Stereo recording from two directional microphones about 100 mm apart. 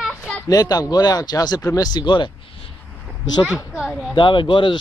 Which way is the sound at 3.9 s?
Centre (ahead or behind).